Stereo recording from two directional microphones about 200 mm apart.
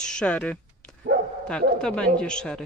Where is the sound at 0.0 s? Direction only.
5° left (ahead or behind).